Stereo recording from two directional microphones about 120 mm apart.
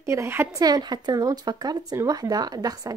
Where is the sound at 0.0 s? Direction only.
25° right (ahead or behind).